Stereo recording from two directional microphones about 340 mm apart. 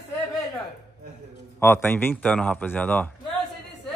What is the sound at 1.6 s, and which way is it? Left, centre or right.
Speech, centre.